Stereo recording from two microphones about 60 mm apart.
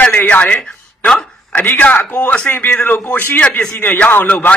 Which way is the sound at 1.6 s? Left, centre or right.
Left.